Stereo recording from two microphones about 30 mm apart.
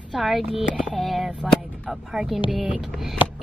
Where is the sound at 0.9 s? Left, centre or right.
Centre.